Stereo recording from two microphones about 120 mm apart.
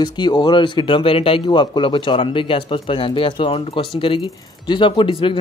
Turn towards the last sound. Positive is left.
turn(degrees=45)  # may be behind; listen again after turning